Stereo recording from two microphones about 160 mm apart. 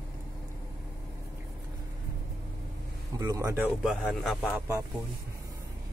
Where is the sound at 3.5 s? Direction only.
5° right (ahead or behind).